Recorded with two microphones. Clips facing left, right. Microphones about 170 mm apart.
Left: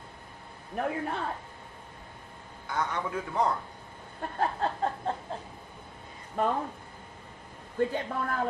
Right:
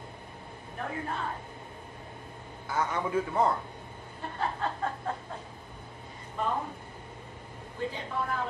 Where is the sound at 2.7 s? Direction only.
5° right (ahead or behind).